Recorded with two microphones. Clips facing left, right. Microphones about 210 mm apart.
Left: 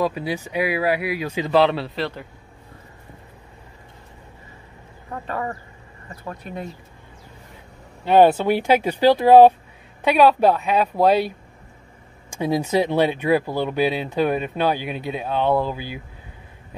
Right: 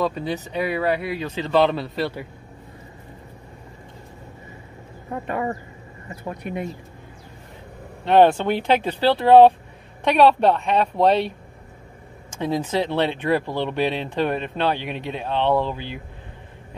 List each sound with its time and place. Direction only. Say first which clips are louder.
0.0 s speech: left 1 dB; 10° left (ahead or behind)
5.1 s speech: right 3 dB; 20° right (ahead or behind)
8.0 s a woman's voice: left 1 dB; 5° left (ahead or behind)